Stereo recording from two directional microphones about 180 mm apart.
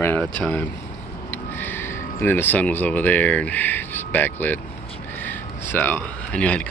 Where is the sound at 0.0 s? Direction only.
10° left (ahead or behind).